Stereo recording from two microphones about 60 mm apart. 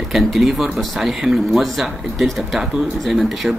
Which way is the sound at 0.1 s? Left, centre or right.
Centre.